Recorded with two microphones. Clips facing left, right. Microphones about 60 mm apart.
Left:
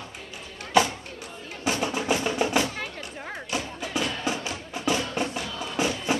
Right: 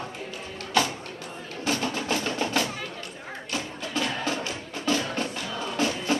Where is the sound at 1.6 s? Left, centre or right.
Centre.